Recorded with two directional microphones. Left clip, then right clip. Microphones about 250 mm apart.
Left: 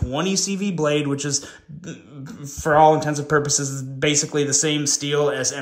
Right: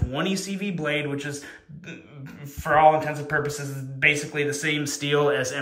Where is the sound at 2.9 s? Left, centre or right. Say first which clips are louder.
Left 4 dB; centre.